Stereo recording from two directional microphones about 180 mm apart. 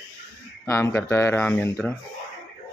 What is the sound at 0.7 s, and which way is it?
Speech, 15° left (ahead or behind).